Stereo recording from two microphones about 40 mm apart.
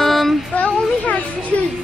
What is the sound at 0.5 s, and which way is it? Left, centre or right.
Speech, left.